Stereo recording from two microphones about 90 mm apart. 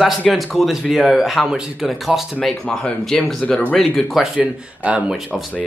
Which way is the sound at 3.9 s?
Centre (ahead or behind).